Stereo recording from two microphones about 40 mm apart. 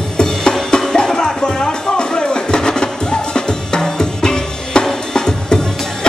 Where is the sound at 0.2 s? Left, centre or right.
Centre.